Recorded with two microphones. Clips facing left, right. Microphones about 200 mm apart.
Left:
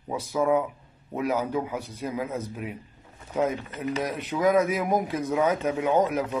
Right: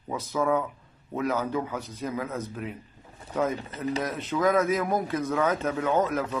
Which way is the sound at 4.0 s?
15° left (ahead or behind).